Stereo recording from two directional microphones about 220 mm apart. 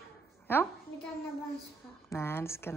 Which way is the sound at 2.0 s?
10° left (ahead or behind).